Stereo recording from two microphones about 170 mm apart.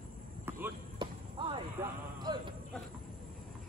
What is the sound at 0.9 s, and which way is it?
Basketball bounce, 30° right (ahead or behind).